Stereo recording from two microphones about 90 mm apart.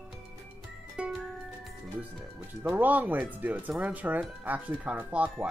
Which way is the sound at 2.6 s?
20° right (ahead or behind).